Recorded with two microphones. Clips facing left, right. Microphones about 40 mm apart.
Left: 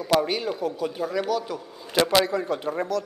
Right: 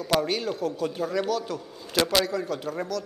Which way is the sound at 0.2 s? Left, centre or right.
Centre.